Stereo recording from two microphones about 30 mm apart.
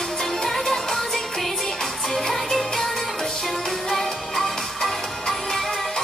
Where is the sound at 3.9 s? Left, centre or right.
Centre.